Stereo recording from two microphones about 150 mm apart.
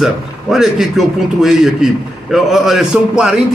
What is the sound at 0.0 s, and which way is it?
A man's voice, centre (ahead or behind).